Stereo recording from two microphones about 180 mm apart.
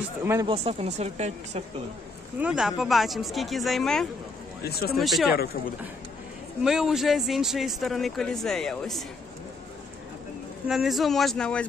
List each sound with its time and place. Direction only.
0.2 s speech: 15° right (ahead or behind)
0.5 s a woman's voice: 35° right (ahead or behind)
2.3 s speech: 5° right (ahead or behind)
4.6 s speech: 60° left (ahead or behind)
4.9 s speech: centre (ahead or behind)
6.6 s speech: 5° right (ahead or behind)
10.7 s speech: centre (ahead or behind)